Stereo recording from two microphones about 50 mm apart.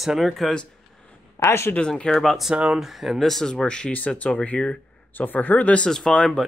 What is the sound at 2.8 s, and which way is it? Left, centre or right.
Speech, centre.